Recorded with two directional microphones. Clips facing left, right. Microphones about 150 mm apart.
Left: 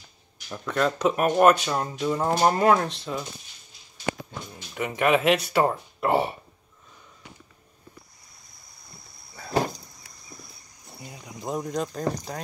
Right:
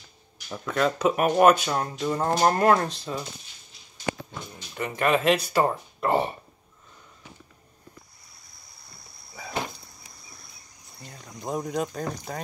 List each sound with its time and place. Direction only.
0.5 s speech: centre (ahead or behind)
4.6 s speech: 5° left (ahead or behind)
9.5 s a sound: 40° left (ahead or behind)
11.0 s speech: 10° left (ahead or behind)
11.3 s speech: centre (ahead or behind)